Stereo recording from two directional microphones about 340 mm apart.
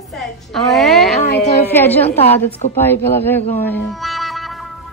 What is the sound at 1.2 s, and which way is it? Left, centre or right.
Speech, left.